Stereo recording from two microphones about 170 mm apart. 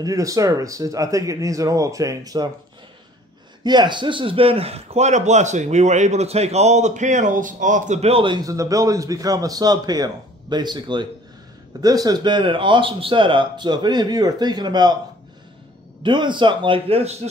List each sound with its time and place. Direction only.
0.0 s speech: 20° right (ahead or behind)
3.6 s a man's voice: 25° right (ahead or behind)
16.0 s speech: 25° right (ahead or behind)